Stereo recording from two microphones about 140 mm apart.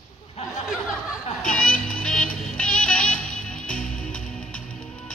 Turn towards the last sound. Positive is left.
turn(degrees=5)  # may be behind; listen again after turning